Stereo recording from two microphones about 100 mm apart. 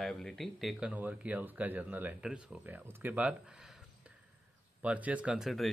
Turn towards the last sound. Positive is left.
turn(degrees=-10)  # may be behind; listen again after turning